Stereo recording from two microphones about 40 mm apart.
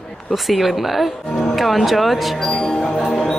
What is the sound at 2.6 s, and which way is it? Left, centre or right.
Music, centre.